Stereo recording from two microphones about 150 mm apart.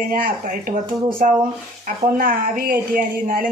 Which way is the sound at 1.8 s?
70° right (ahead or behind).